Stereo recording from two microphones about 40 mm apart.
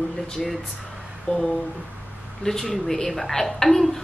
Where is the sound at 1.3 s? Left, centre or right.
Left.